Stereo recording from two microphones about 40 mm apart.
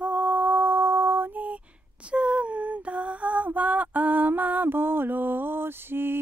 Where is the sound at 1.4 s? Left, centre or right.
Right.